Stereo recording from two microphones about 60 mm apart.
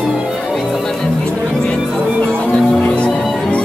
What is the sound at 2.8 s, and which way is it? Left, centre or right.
Music, left.